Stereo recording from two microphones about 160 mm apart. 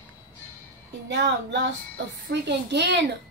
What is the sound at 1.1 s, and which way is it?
A woman's voice, 90° right.